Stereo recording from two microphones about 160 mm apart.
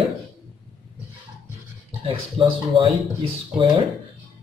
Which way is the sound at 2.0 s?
35° right (ahead or behind).